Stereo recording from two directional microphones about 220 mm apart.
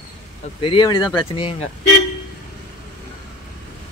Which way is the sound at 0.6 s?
20° left (ahead or behind).